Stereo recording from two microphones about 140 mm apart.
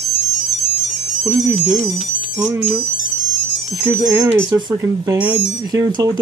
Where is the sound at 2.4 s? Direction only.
25° right (ahead or behind).